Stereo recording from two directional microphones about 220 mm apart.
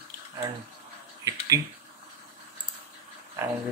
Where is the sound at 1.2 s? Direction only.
15° right (ahead or behind).